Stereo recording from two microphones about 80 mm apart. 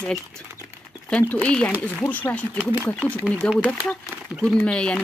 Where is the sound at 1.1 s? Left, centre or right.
Centre.